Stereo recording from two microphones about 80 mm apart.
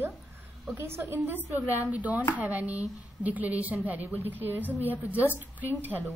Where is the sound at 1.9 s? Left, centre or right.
Centre.